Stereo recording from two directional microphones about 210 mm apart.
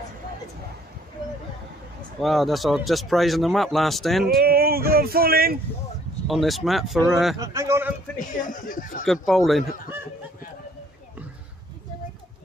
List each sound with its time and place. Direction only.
2.2 s speech: centre (ahead or behind)
4.4 s speech: 45° right (ahead or behind)
6.2 s speech: centre (ahead or behind)
7.3 s a man's voice: 15° right (ahead or behind)
8.5 s speech: 40° left (ahead or behind)
9.0 s speech: centre (ahead or behind)